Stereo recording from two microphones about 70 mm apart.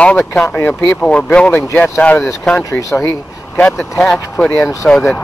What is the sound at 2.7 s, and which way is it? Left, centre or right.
Speech, left.